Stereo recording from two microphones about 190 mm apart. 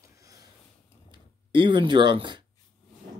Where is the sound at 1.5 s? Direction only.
25° right (ahead or behind).